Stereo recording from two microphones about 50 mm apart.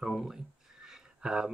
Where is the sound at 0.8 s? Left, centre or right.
Centre.